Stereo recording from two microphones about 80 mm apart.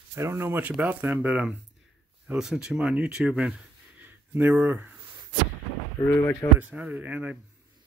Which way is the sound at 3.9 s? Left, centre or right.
Right.